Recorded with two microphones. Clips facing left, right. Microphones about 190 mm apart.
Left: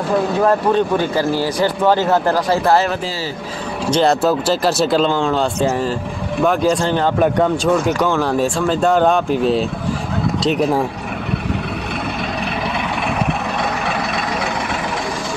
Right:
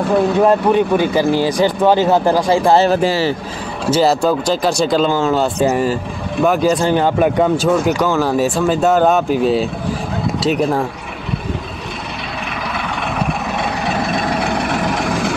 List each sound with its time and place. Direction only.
0.5 s speech: 15° right (ahead or behind)
3.0 s speech: 65° right (ahead or behind)
3.9 s speech: 5° right (ahead or behind)